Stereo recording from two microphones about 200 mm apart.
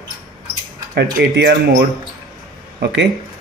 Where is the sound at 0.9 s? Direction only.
55° right (ahead or behind).